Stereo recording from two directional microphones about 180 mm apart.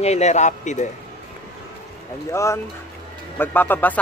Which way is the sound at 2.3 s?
15° left (ahead or behind).